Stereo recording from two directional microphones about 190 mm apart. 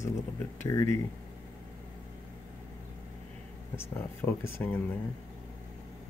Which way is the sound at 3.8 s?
10° left (ahead or behind).